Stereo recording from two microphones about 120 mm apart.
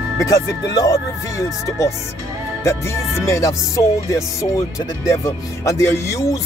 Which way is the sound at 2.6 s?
25° left (ahead or behind).